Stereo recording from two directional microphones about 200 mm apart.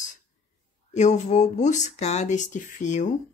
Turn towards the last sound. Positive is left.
turn(degrees=35)  # may be behind; listen again after turning